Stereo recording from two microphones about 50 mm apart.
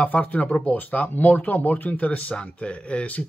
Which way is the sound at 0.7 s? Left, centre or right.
Left.